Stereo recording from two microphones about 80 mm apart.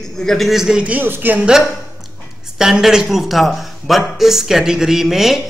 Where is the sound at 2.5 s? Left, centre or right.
Centre.